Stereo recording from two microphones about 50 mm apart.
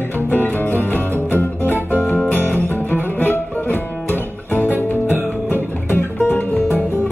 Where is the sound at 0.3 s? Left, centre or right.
Left.